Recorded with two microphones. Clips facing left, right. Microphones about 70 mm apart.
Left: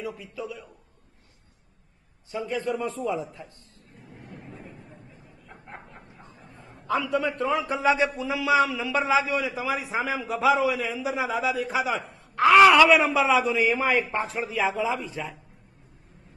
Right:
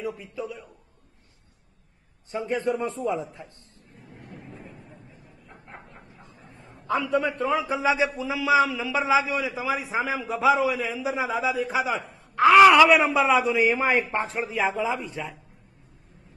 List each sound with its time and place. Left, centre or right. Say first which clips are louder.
0.4 s a man's voice: right 1 dB; centre
2.3 s a man's voice: right 2 dB; right
3.0 s a man's voice: right 1 dB; centre
4.1 s a sound: even; centre
7.8 s a man's voice: left 2 dB; centre
8.1 s a man's voice: right 1 dB; centre
11.2 s a man's voice: right 1 dB; centre
11.8 s a man's voice: even; centre